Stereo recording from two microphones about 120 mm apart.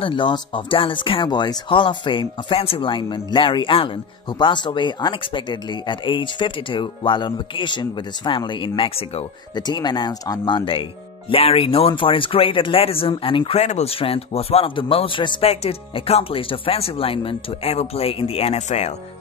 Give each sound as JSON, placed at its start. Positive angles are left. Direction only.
{"t": 0.0, "sound": "speech", "side_deg": 45}
{"t": 9.6, "sound": "speech", "side_deg": 35}
{"t": 13.6, "sound": "speech", "side_deg": 65}
{"t": 15.5, "sound": "speech", "side_deg": 60}